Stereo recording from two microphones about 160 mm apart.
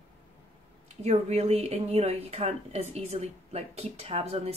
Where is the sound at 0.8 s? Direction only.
45° right (ahead or behind).